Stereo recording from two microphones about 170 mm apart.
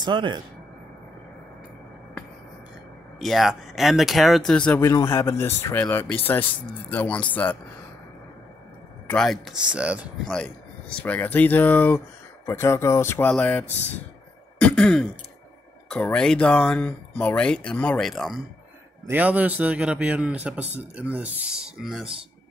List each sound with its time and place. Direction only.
0.0 s speech: 25° right (ahead or behind)
3.2 s speech: centre (ahead or behind)
4.8 s speech: 20° left (ahead or behind)
9.0 s speech: 5° left (ahead or behind)
10.3 s speech: 5° left (ahead or behind)
14.6 s throat clearing: 5° left (ahead or behind)
15.9 s speech: 5° left (ahead or behind)